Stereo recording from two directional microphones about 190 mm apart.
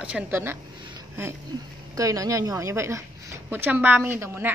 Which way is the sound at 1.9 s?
15° right (ahead or behind).